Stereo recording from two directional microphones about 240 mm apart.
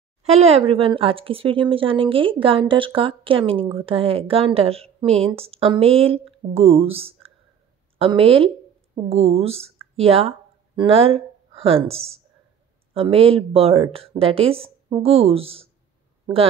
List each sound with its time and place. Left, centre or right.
0.2 s speech: right